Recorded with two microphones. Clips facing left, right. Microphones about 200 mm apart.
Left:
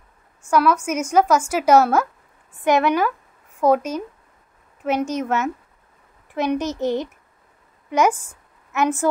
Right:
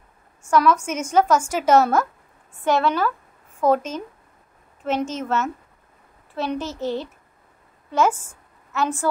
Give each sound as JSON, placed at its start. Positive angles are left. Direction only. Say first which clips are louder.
{"t": 0.5, "sound": "a child's voice", "louder": "even", "side_deg": 10}